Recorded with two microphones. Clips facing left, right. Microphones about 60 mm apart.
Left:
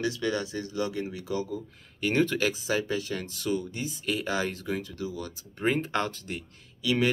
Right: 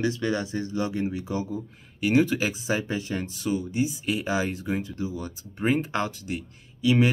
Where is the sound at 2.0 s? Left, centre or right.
Centre.